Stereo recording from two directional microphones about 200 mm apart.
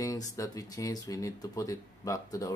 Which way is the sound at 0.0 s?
15° left (ahead or behind).